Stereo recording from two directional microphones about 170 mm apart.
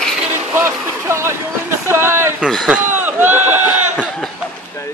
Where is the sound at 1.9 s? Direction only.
15° right (ahead or behind).